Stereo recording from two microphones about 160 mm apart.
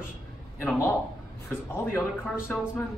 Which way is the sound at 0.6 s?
15° left (ahead or behind).